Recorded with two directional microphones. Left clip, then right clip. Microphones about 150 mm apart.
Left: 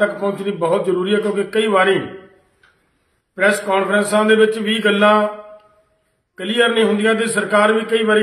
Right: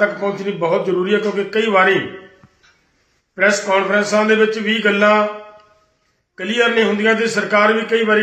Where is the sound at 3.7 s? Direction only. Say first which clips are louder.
Right 1 dB; 15° left (ahead or behind).